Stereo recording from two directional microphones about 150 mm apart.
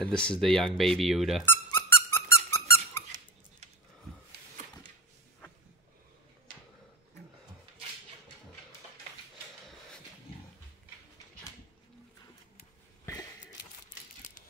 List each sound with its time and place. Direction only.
0.0 s speech: 5° left (ahead or behind)
1.4 s squeak: 15° left (ahead or behind)
13.0 s a sound: 25° left (ahead or behind)